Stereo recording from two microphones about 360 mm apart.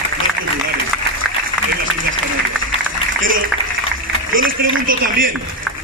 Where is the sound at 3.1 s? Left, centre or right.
Right.